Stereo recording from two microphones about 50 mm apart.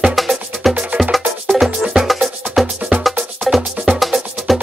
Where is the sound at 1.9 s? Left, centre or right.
Centre.